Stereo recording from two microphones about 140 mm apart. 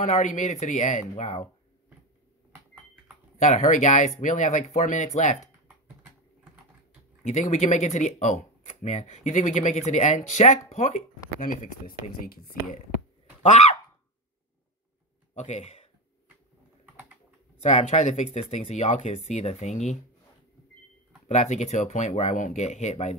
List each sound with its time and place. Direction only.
0.0 s speech: 60° left (ahead or behind)
3.3 s speech: 60° left (ahead or behind)
7.2 s speech: 55° left (ahead or behind)
11.4 s speech: 65° left (ahead or behind)
15.3 s speech: 55° left (ahead or behind)
17.6 s speech: 50° left (ahead or behind)
21.3 s speech: 55° left (ahead or behind)